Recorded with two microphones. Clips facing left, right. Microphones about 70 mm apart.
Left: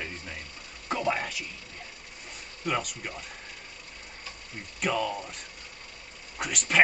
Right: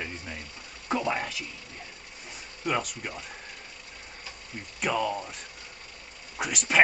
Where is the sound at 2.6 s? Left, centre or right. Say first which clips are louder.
Right 1 dB; centre.